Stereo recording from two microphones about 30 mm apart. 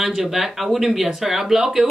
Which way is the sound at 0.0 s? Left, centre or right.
Centre.